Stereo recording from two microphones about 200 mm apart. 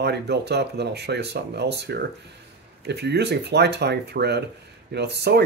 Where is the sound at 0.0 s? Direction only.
55° right (ahead or behind).